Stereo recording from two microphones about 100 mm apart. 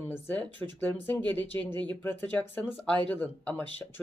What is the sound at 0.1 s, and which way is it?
Speech, 15° left (ahead or behind).